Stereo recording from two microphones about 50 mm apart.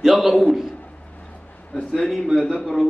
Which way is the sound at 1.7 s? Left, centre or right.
Centre.